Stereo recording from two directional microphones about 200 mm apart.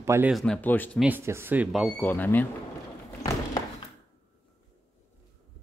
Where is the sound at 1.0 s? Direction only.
10° right (ahead or behind); by 2.4 s 10° left (ahead or behind).